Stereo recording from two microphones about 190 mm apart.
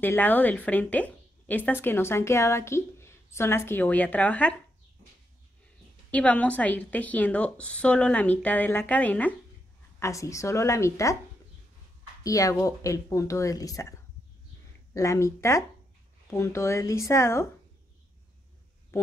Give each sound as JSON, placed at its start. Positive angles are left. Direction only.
{"t": 0.0, "sound": "a woman's voice", "side_deg": 10}
{"t": 6.1, "sound": "a woman's voice", "side_deg": 5}
{"t": 12.2, "sound": "a woman's voice", "side_deg": 20}
{"t": 15.0, "sound": "a woman's voice", "side_deg": 15}